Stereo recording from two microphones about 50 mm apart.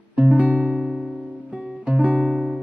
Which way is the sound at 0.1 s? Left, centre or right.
Right.